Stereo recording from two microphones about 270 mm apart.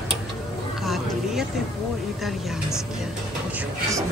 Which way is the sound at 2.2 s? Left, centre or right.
Centre.